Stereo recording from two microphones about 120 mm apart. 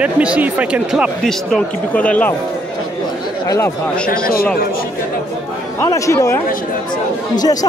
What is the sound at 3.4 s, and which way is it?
Speech, 25° left (ahead or behind).